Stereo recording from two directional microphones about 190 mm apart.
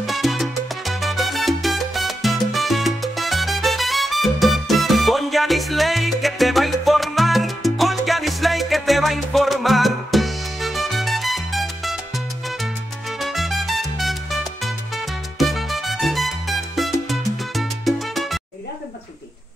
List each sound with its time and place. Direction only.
0.0 s salsa music: centre (ahead or behind)
13.2 s music: centre (ahead or behind)
17.1 s salsa music: centre (ahead or behind)